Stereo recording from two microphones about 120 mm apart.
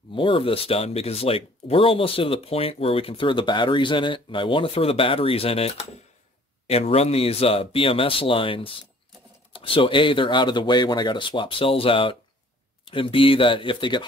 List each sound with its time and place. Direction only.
0.1 s speech: 45° left (ahead or behind)